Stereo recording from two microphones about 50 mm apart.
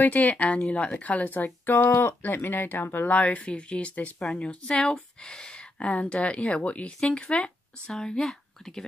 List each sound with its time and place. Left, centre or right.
0.0 s speech: left
3.1 s speech: left; by 8.8 s centre